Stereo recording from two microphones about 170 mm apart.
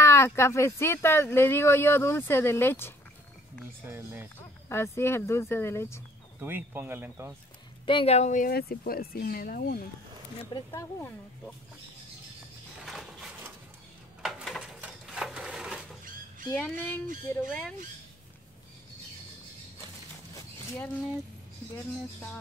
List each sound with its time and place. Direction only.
0.0 s speech: 15° left (ahead or behind)
3.9 s speech: 10° right (ahead or behind)
4.6 s speech: 15° left (ahead or behind)
6.4 s speech: 10° right (ahead or behind)
7.8 s speech: 30° left (ahead or behind); by 9.8 s 60° left (ahead or behind)
10.7 s speech: 15° left (ahead or behind)
12.7 s a sound: centre (ahead or behind)
16.5 s speech: 10° left (ahead or behind)